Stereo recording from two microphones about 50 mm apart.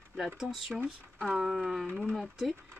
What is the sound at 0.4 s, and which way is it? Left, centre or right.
Speech, centre.